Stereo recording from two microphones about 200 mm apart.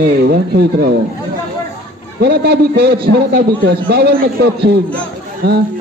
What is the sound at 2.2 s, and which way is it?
A man's voice, 55° right (ahead or behind).